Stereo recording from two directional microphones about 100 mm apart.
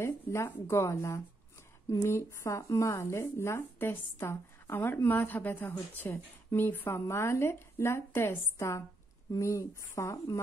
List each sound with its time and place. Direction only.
0.0 s speech: 25° left (ahead or behind)